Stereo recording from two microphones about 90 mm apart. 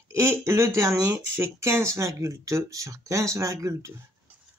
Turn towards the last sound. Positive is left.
turn(degrees=-35)  # may be behind; listen again after turning